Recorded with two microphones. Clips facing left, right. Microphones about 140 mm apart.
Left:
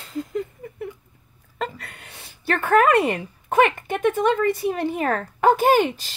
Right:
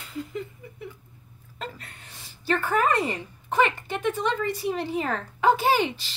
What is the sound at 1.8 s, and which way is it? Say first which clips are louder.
Speech: left 4 dB; 70° left (ahead or behind).